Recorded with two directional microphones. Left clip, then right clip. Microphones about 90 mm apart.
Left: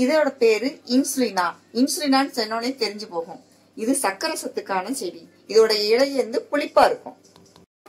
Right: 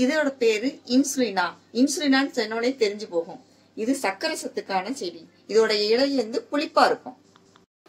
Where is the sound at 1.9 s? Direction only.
35° right (ahead or behind).